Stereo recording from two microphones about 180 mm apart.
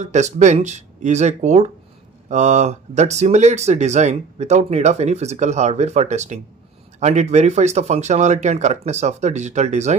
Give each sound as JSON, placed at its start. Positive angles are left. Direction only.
{"t": 0.0, "sound": "speech", "side_deg": -40}